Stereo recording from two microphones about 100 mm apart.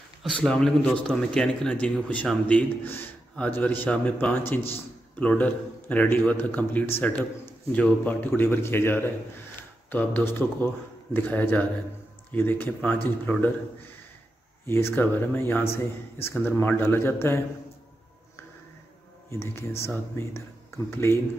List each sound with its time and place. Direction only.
0.2 s a man's voice: 5° left (ahead or behind)
14.7 s a man's voice: 25° left (ahead or behind)
19.3 s a man's voice: 25° left (ahead or behind)